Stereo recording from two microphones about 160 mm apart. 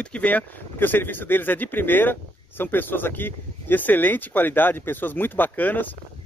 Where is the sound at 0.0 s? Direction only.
5° left (ahead or behind).